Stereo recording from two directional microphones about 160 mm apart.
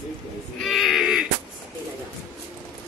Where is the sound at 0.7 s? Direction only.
Centre (ahead or behind).